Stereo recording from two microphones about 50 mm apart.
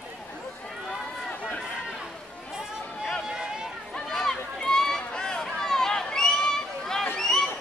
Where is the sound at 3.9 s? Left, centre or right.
Centre.